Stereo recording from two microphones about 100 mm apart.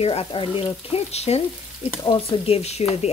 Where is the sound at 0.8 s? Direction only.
90° left.